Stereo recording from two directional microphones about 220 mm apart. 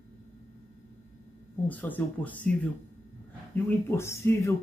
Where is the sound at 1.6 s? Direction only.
10° left (ahead or behind).